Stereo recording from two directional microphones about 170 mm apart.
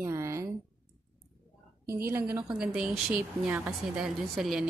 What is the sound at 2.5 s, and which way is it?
Speech, 5° right (ahead or behind).